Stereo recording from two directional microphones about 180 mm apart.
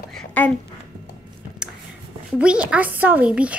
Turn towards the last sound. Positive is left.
turn(degrees=-5)  # may be behind; listen again after turning